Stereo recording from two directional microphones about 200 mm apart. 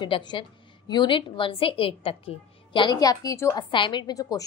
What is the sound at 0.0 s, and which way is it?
A woman's voice, 20° left (ahead or behind).